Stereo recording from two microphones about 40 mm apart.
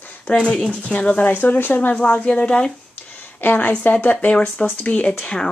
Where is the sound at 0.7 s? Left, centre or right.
Left.